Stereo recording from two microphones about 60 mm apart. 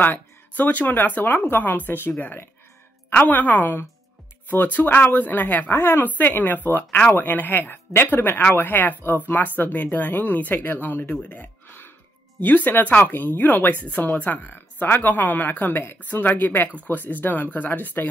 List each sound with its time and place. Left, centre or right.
0.0 s speech: left
5.7 s speech: left